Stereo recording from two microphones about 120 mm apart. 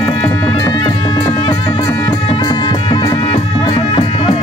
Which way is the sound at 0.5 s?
40° left (ahead or behind).